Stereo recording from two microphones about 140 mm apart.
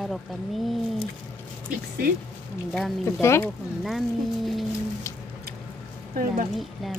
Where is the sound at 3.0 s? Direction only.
20° left (ahead or behind).